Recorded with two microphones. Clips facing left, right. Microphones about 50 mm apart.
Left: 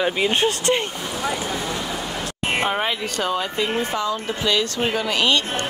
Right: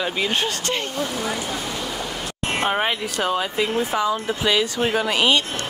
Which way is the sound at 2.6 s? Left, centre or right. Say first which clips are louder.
Right 1 dB; centre.